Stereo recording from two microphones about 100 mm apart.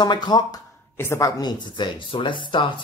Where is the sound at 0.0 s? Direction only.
45° left (ahead or behind).